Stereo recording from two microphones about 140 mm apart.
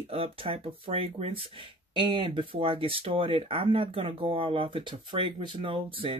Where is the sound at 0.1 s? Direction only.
40° right (ahead or behind).